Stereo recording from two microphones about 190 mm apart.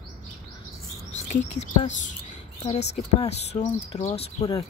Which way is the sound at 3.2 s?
35° left (ahead or behind).